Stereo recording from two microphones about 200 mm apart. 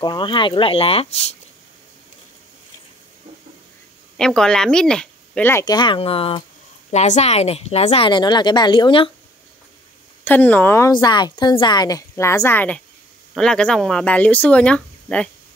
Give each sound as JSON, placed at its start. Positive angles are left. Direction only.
{"t": 0.0, "sound": "speech", "side_deg": 25}
{"t": 4.2, "sound": "a woman's voice", "side_deg": 5}
{"t": 10.2, "sound": "a woman's voice", "side_deg": 10}